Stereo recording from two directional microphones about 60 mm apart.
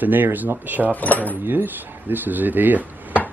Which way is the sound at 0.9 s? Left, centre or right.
Left.